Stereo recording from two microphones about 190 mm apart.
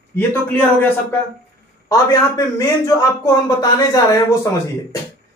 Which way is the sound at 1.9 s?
20° left (ahead or behind).